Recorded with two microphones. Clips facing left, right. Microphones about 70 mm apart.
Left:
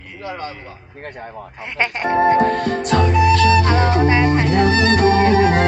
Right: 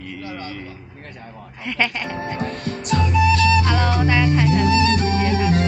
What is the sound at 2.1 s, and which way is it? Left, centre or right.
Music, left.